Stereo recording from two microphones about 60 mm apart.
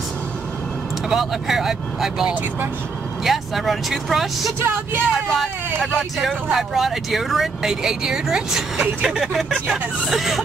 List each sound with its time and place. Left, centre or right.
1.1 s speech: centre
4.6 s speech: right
5.1 s speech: centre